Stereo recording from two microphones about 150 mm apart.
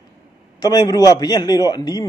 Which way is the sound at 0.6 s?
25° left (ahead or behind).